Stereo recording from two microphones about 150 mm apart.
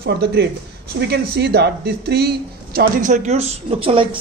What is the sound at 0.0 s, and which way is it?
Speech, 90° right.